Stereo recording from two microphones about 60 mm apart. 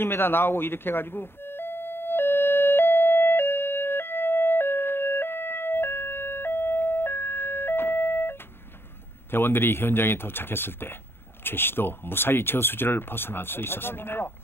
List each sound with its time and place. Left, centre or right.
0.0 s doorbell: left
9.3 s speech: left